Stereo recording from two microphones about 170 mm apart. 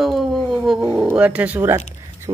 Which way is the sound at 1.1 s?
10° right (ahead or behind).